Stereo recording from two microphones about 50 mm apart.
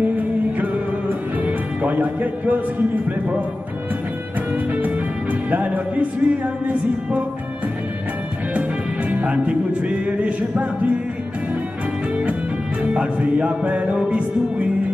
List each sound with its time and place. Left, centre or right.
0.2 s music: right
4.7 s music: right
9.1 s music: right
12.8 s music: right